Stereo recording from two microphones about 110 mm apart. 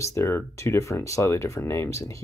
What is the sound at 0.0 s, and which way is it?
Speech, 25° left (ahead or behind).